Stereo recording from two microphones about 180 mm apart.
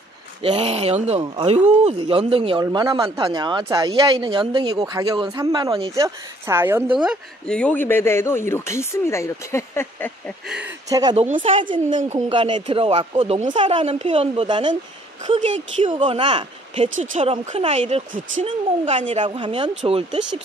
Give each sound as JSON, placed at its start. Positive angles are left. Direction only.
{"t": 0.4, "sound": "speech", "side_deg": -35}
{"t": 5.9, "sound": "speech", "side_deg": -15}
{"t": 10.9, "sound": "speech", "side_deg": -20}
{"t": 11.1, "sound": "speech", "side_deg": -40}
{"t": 12.3, "sound": "speech", "side_deg": -25}
{"t": 13.5, "sound": "speech", "side_deg": -30}
{"t": 19.2, "sound": "speech", "side_deg": -30}